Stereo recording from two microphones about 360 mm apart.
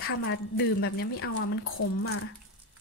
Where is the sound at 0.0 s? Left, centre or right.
Left.